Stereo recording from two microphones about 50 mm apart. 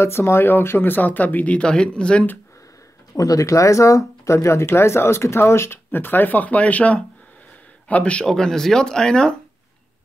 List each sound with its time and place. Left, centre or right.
0.0 s a man's voice: left; by 2.2 s centre
3.4 s speech: left
4.6 s speech: left
5.9 s a man's voice: left
8.3 s speech: centre